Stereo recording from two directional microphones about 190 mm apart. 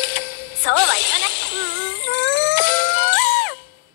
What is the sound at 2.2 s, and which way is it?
Music, 70° left (ahead or behind).